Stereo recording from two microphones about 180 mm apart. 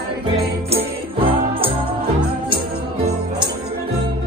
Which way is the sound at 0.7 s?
30° right (ahead or behind).